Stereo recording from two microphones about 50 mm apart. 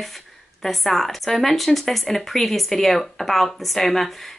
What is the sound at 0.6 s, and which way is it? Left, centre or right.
Speech, centre.